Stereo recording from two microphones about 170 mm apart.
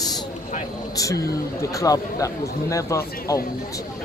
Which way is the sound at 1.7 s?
20° left (ahead or behind).